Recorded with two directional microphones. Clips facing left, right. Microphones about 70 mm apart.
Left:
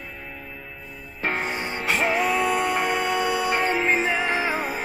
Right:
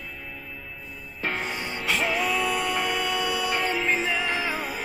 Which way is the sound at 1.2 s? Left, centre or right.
Left.